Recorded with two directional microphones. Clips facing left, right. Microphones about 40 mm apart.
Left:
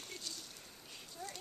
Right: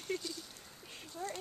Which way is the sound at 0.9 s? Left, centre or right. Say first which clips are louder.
Right 6 dB; right.